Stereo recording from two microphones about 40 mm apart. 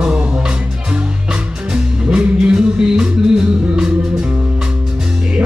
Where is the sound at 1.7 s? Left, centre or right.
Right.